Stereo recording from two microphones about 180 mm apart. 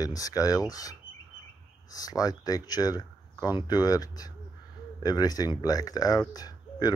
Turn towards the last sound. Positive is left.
turn(degrees=20)  # may be behind; listen again after turning